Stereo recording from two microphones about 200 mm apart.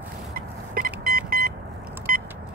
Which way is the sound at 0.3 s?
45° right (ahead or behind).